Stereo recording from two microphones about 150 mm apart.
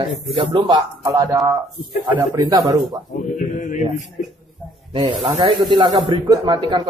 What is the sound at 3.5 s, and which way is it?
Mantra, 55° left (ahead or behind).